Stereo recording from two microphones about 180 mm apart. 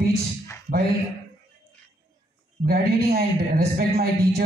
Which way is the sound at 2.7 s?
55° right (ahead or behind).